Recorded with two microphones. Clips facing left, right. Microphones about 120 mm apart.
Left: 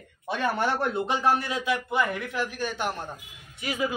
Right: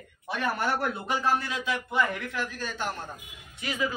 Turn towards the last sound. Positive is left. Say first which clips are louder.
# left 2 dB
turn(degrees=15)  # may be behind; listen again after turning